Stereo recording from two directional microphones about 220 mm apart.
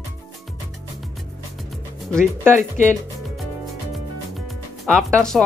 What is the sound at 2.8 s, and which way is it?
Speech, 35° left (ahead or behind).